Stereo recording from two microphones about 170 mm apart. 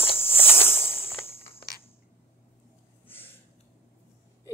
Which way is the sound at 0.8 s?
35° left (ahead or behind).